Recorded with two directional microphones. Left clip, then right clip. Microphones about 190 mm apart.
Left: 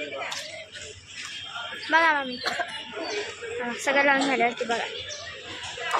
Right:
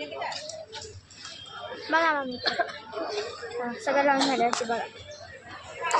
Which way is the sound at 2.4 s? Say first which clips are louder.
Right 1 dB; 40° right (ahead or behind).